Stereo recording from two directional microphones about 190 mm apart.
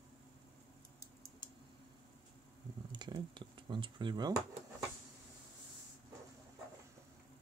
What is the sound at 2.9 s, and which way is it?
Speech, 25° right (ahead or behind).